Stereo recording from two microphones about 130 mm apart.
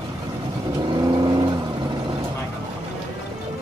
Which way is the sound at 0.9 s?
35° right (ahead or behind).